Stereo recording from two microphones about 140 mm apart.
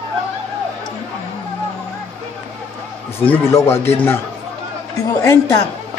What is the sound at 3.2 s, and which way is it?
Speech, 15° left (ahead or behind).